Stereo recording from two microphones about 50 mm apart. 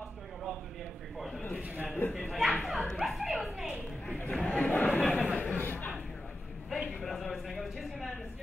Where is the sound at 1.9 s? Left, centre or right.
Left.